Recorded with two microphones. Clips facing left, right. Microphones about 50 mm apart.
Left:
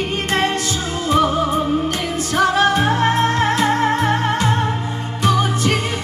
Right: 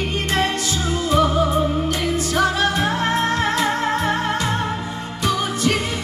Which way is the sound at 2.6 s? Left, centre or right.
Left.